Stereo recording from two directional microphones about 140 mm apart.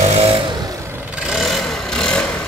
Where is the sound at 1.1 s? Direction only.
5° right (ahead or behind).